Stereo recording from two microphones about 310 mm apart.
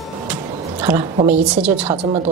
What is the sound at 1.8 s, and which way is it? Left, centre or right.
Speech, centre.